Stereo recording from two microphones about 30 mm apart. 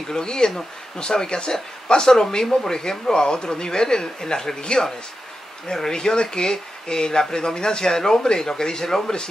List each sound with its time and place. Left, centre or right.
0.1 s speech: left